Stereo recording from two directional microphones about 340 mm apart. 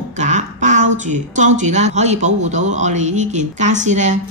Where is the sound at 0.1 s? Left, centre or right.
Right.